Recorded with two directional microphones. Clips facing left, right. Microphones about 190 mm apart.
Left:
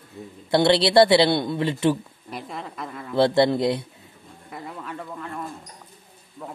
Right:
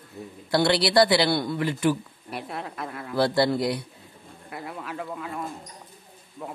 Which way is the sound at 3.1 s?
25° left (ahead or behind).